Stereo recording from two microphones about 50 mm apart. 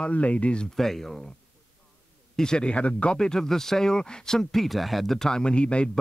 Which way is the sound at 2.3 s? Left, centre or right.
Centre.